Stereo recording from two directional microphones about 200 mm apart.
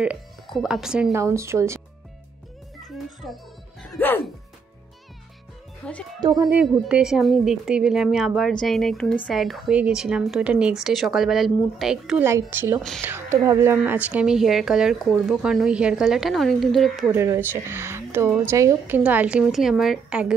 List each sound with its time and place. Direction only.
0.0 s speech: 5° right (ahead or behind)
1.1 s speech: 15° right (ahead or behind)
2.8 s music: centre (ahead or behind)
3.9 s speech: 10° left (ahead or behind)
5.8 s a woman's voice: 5° left (ahead or behind)
6.2 s speech: 20° right (ahead or behind)
6.5 s a woman's voice: 5° right (ahead or behind)
17.1 s a woman's voice: 10° right (ahead or behind)